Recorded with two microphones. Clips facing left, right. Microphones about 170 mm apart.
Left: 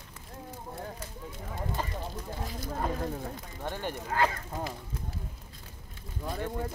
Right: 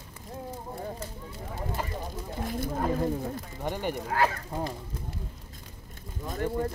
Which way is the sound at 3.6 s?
15° right (ahead or behind).